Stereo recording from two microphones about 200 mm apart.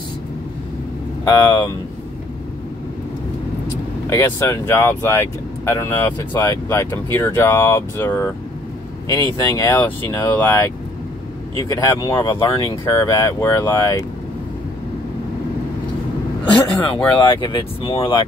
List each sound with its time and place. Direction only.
4.1 s speech: 15° left (ahead or behind)
11.7 s speech: 20° left (ahead or behind)
16.5 s speech: 5° left (ahead or behind)
17.2 s speech: 25° left (ahead or behind)